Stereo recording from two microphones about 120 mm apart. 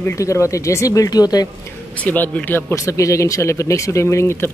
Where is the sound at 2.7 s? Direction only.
25° left (ahead or behind).